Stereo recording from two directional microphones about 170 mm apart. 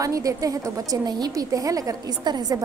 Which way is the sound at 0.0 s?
20° right (ahead or behind).